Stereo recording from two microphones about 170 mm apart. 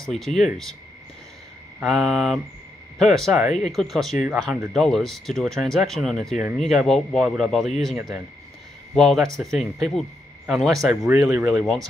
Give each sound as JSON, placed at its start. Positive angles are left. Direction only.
{"t": 0.0, "sound": "speech", "side_deg": 0}
{"t": 1.8, "sound": "speech", "side_deg": 0}
{"t": 8.9, "sound": "speech", "side_deg": 0}
{"t": 11.1, "sound": "speech", "side_deg": -15}
{"t": 11.6, "sound": "speech", "side_deg": 0}